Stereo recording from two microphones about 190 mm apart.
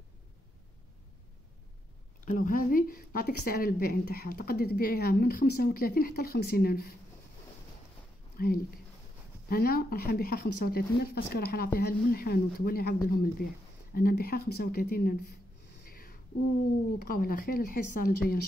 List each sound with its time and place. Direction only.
2.3 s a woman's voice: 45° left (ahead or behind)
8.4 s a woman's voice: 50° left (ahead or behind)
17.0 s a woman's voice: 50° left (ahead or behind)